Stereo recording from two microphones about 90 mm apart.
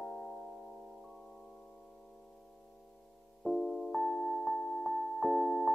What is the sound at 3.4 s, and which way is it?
Music, centre (ahead or behind).